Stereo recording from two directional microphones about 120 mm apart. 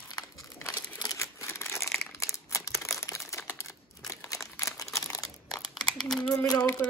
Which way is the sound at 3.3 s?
25° left (ahead or behind).